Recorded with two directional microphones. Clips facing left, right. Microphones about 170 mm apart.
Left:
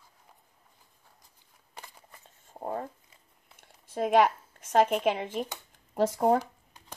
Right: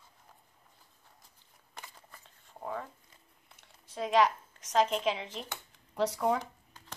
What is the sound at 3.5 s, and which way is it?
Speech, 50° left (ahead or behind).